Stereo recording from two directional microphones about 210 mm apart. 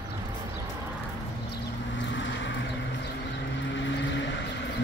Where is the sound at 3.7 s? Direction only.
60° left (ahead or behind).